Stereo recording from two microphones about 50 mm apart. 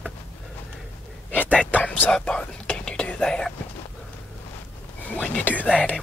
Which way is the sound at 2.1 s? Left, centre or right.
Centre.